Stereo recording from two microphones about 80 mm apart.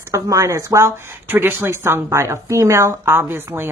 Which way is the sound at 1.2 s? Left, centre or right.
Right.